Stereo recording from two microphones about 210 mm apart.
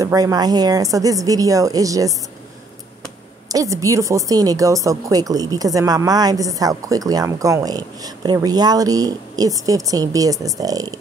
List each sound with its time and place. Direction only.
0.0 s a woman's voice: 15° right (ahead or behind)
3.4 s a woman's voice: 15° right (ahead or behind)